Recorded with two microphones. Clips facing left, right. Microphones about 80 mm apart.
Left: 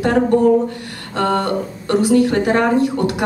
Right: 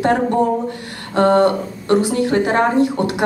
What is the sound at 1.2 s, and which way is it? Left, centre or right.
A woman's voice, right.